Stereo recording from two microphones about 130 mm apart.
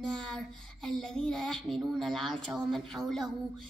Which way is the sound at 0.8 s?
5° left (ahead or behind).